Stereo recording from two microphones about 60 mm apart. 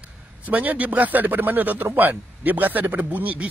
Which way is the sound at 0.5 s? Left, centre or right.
Right.